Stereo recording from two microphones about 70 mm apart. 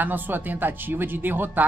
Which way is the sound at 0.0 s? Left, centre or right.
Right.